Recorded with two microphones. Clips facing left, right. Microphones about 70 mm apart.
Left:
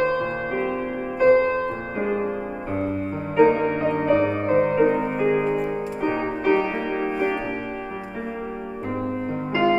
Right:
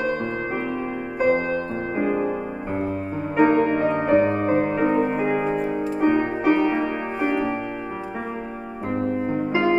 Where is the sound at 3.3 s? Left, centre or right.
Centre.